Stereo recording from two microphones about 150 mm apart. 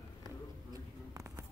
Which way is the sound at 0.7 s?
20° right (ahead or behind).